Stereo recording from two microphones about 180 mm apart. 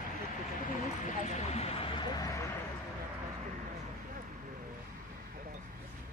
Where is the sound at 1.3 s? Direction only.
35° left (ahead or behind); by 2.4 s 20° left (ahead or behind).